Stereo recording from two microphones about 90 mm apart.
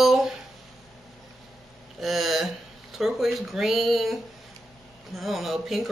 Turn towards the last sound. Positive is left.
turn(degrees=0)  # may be behind; listen again after turning